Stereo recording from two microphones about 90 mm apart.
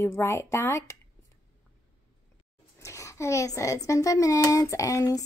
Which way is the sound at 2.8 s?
35° left (ahead or behind).